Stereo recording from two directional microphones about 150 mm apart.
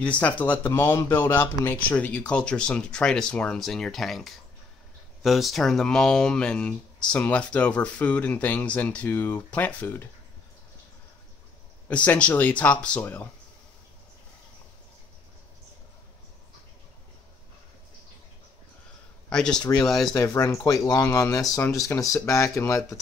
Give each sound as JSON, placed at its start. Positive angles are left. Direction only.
{"t": 0.0, "sound": "speech", "side_deg": 10}
{"t": 11.9, "sound": "speech", "side_deg": 10}
{"t": 19.2, "sound": "speech", "side_deg": 5}
{"t": 20.2, "sound": "speech", "side_deg": 20}
{"t": 21.5, "sound": "speech", "side_deg": 5}
{"t": 22.1, "sound": "speech", "side_deg": 20}